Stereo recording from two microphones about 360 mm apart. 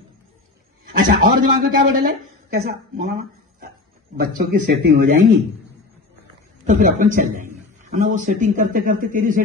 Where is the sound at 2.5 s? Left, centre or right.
Right.